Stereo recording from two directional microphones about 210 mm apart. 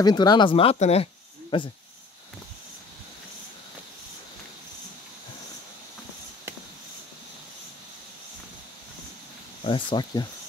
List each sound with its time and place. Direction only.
0.0 s speech: 20° left (ahead or behind)
9.7 s speech: 20° left (ahead or behind)